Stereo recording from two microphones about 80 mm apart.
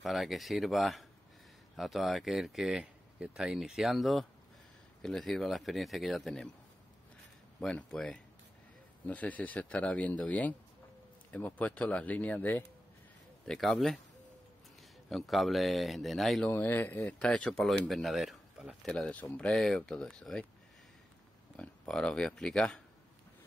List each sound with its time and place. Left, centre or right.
0.0 s speech: centre
7.6 s speech: centre
13.5 s speech: centre
15.0 s speech: centre
16.4 s speech: left
17.2 s speech: centre
18.9 s speech: centre
21.5 s speech: centre